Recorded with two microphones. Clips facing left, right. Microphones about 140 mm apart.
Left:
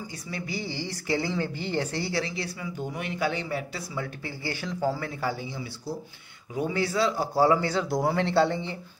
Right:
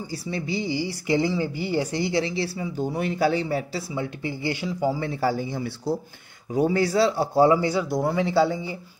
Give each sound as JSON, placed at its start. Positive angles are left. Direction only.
{"t": 0.1, "sound": "speech", "side_deg": -25}
{"t": 2.2, "sound": "speech", "side_deg": -30}
{"t": 3.9, "sound": "speech", "side_deg": -20}
{"t": 5.0, "sound": "speech", "side_deg": -30}
{"t": 5.3, "sound": "speech", "side_deg": -50}
{"t": 6.5, "sound": "speech", "side_deg": -40}
{"t": 7.5, "sound": "speech", "side_deg": -15}
{"t": 7.9, "sound": "speech", "side_deg": 0}